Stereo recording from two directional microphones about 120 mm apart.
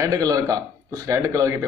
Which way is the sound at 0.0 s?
30° right (ahead or behind).